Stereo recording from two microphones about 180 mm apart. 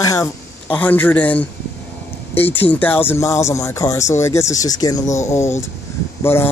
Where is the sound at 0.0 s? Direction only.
15° left (ahead or behind).